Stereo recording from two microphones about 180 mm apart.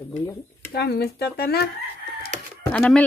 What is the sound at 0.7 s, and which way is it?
Speech, 65° left (ahead or behind).